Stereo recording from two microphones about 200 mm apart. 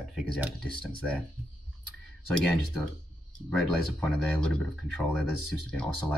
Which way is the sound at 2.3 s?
5° left (ahead or behind).